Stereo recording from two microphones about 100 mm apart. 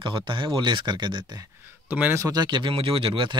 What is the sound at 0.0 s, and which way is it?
Speech, 55° right (ahead or behind).